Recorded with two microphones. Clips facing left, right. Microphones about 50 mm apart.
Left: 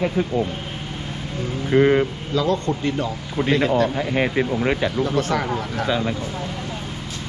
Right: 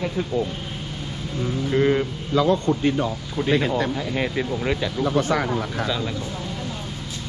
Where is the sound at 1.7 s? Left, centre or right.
Left.